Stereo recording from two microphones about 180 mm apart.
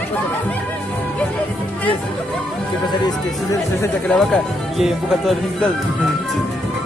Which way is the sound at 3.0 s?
20° left (ahead or behind).